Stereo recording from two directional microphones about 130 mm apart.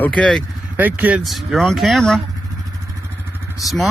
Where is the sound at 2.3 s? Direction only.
25° right (ahead or behind).